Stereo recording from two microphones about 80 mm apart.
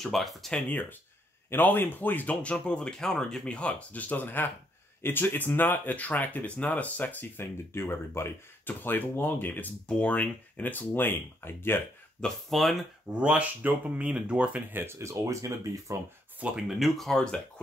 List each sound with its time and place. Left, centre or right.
0.0 s speech: centre
0.7 s speech: left
12.2 s speech: centre
13.2 s speech: centre
14.7 s speech: right
16.6 s speech: centre